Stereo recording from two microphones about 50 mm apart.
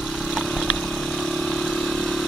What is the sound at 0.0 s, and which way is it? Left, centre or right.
Vehicle, centre.